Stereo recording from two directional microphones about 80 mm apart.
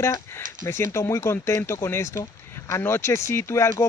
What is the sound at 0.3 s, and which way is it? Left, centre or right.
Speech, left.